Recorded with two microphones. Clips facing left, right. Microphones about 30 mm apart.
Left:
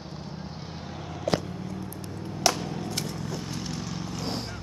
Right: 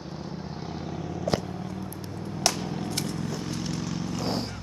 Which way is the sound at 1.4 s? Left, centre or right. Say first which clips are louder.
Right 1 dB; centre.